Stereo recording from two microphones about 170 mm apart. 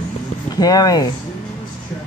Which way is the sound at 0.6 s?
20° left (ahead or behind).